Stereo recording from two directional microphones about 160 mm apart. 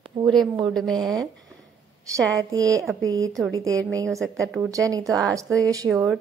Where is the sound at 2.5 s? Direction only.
20° right (ahead or behind).